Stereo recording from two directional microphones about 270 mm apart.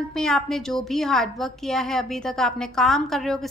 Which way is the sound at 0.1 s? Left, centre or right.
Centre.